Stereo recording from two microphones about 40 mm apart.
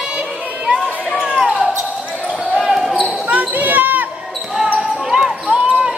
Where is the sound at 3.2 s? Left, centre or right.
Right.